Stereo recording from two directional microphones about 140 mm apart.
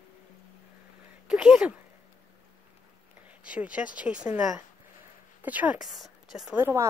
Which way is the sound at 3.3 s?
10° right (ahead or behind).